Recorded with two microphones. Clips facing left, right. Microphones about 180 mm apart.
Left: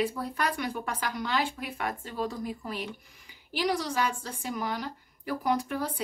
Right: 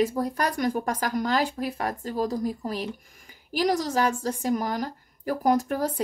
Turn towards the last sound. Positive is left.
turn(degrees=-45)  # may be behind; listen again after turning